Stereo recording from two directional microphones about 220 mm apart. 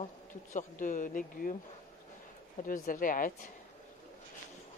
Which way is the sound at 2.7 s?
40° left (ahead or behind).